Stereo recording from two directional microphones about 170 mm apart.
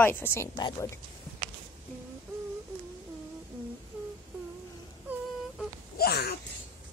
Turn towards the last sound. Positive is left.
turn(degrees=70)  # may be behind; listen again after turning